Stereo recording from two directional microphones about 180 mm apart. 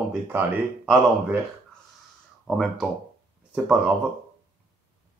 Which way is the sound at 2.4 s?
Centre (ahead or behind).